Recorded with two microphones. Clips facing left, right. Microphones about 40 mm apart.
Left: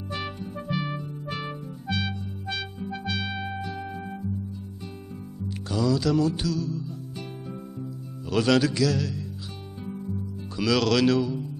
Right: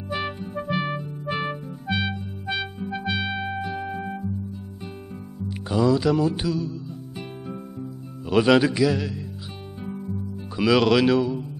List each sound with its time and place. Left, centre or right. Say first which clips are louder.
0.1 s music: right 5 dB; centre
5.7 s music: right 4 dB; right